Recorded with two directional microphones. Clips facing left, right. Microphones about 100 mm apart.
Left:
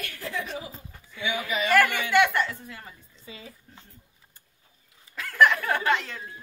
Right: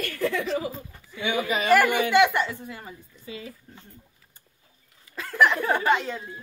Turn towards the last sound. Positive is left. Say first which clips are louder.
# right 3 dB
turn(degrees=-15)  # may be behind; listen again after turning